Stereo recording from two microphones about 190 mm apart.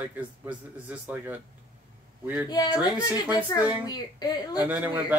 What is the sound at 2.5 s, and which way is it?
A woman's voice, 20° left (ahead or behind).